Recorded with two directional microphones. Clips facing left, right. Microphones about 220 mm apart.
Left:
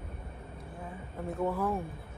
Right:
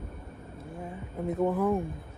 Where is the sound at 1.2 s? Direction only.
20° right (ahead or behind).